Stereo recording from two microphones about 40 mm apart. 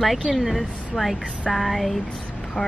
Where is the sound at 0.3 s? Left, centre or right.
Centre.